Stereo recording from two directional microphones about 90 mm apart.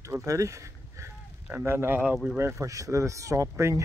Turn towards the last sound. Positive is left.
turn(degrees=-35)  # may be behind; listen again after turning